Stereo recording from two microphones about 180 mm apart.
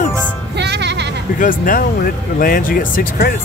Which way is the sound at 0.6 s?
70° right (ahead or behind).